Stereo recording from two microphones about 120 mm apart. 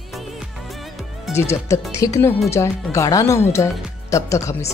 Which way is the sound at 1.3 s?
20° left (ahead or behind).